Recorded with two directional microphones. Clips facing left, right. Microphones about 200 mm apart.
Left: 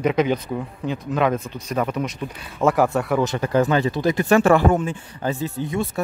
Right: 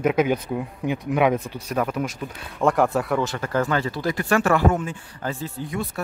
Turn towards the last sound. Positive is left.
turn(degrees=25)  # may be behind; listen again after turning